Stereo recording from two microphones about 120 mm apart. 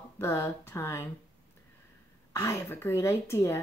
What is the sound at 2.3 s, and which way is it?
A woman's voice, 25° left (ahead or behind).